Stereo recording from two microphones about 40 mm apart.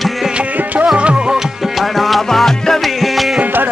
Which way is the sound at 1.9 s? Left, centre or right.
Centre.